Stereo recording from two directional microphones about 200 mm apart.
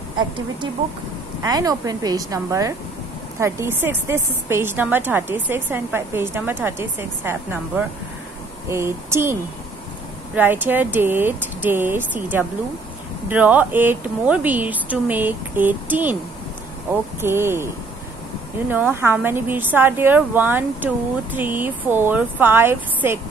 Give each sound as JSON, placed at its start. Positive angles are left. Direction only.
{"t": 1.4, "sound": "a woman's voice", "side_deg": -15}
{"t": 17.2, "sound": "a woman's voice", "side_deg": -10}
{"t": 18.7, "sound": "a woman's voice", "side_deg": -10}